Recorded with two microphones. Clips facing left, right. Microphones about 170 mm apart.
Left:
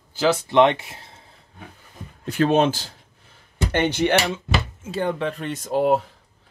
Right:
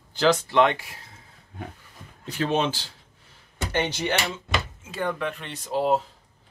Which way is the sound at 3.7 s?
55° left (ahead or behind).